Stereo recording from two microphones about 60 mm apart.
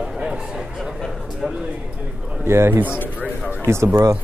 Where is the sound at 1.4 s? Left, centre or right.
Centre.